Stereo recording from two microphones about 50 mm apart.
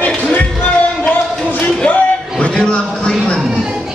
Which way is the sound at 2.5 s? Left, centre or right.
Centre.